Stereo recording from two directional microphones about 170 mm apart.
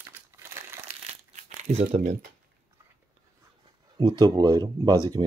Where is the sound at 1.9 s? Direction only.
45° right (ahead or behind).